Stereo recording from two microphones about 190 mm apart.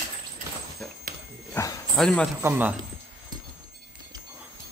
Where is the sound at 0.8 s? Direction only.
5° left (ahead or behind).